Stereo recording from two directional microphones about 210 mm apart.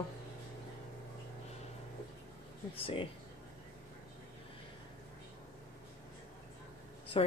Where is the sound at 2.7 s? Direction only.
25° left (ahead or behind).